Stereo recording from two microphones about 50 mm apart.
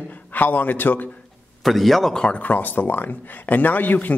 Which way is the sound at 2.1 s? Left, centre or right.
Centre.